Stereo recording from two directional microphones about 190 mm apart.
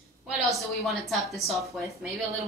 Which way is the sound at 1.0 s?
Centre (ahead or behind).